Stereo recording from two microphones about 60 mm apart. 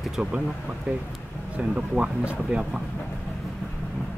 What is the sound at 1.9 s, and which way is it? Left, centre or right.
Speech, centre.